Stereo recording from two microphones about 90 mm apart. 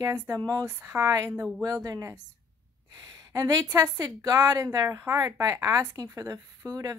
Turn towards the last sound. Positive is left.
turn(degrees=-40)  # may be behind; listen again after turning